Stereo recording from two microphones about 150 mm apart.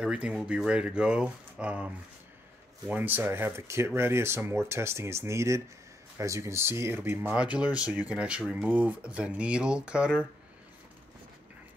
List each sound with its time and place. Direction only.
0.0 s speech: 5° right (ahead or behind)
2.9 s speech: 10° right (ahead or behind)